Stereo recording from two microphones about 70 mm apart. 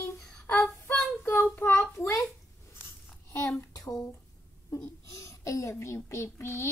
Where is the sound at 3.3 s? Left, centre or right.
Left.